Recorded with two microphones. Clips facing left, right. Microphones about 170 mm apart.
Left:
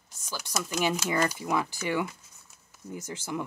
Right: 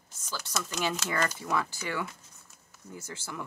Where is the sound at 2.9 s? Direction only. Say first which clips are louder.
Left 6 dB; 15° left (ahead or behind).